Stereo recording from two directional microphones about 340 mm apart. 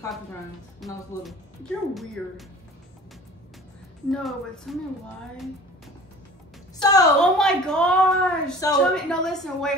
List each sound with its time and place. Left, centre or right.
0.7 s a woman's voice: centre
4.1 s a woman's voice: centre
6.8 s a woman's voice: centre